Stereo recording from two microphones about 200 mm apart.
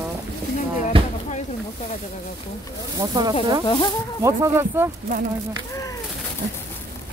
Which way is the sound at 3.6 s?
25° left (ahead or behind).